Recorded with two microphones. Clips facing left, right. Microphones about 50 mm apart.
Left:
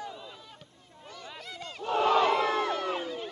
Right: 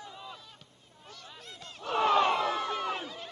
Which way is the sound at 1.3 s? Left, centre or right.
Left.